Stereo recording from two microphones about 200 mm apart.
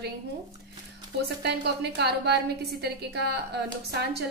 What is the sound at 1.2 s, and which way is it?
A woman's voice, 55° right (ahead or behind).